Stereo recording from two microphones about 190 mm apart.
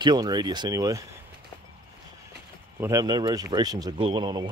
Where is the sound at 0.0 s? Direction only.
20° right (ahead or behind).